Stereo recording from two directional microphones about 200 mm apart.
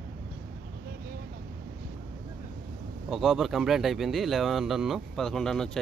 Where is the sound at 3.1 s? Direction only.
Centre (ahead or behind).